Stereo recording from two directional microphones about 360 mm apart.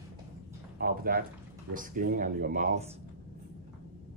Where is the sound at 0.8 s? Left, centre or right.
Right.